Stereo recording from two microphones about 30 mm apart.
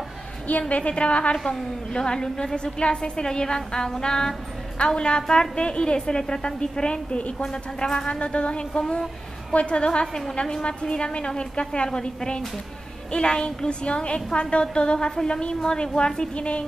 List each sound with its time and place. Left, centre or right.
0.5 s a woman's voice: left
1.4 s a woman's voice: centre
2.0 s a woman's voice: left
4.7 s a woman's voice: left
7.4 s a woman's voice: left
8.1 s a woman's voice: left
16.3 s a woman's voice: left